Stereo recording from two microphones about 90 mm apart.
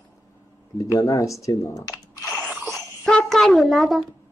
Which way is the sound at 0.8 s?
40° left (ahead or behind).